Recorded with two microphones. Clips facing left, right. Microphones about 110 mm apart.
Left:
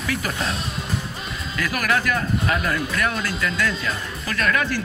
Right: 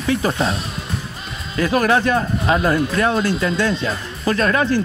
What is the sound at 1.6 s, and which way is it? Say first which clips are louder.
Speech: right 7 dB; 30° right (ahead or behind).